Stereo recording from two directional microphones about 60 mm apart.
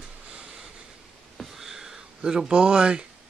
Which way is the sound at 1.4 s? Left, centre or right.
Centre.